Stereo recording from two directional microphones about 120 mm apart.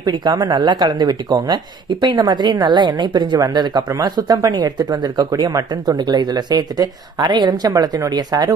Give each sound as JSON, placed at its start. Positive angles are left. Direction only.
{"t": 0.0, "sound": "speech", "side_deg": -35}